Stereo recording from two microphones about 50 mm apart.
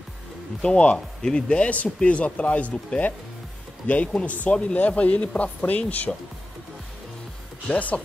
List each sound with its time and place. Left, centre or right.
0.6 s speech: centre
7.6 s speech: left